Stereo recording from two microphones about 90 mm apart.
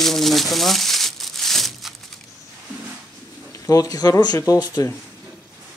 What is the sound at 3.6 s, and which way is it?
Speech, 40° left (ahead or behind).